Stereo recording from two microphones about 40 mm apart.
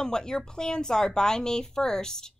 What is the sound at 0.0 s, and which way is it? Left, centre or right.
A woman's voice, centre.